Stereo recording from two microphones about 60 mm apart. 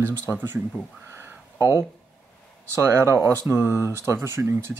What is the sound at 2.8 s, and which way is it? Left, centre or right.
Speech, right.